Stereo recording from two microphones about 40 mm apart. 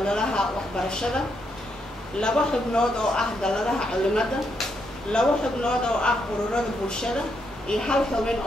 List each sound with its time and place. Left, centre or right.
0.0 s speech: left
2.1 s speech: left